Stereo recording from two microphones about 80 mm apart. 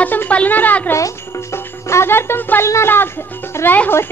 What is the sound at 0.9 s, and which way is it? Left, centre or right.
Music, left.